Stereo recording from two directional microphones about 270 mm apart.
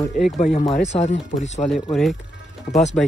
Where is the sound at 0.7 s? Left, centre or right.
Left.